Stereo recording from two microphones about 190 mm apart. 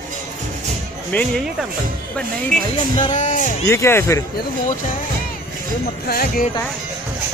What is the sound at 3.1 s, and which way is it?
Speech, 40° left (ahead or behind).